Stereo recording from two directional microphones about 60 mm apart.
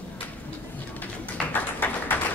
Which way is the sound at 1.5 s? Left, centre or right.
Left.